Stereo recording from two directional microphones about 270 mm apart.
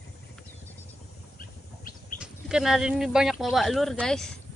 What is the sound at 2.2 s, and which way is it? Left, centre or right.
Speech, centre.